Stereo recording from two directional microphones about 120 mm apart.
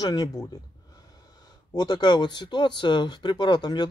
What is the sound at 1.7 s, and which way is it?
Speech, 35° left (ahead or behind).